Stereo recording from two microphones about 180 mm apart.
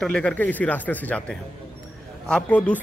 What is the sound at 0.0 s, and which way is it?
Speech, 5° left (ahead or behind).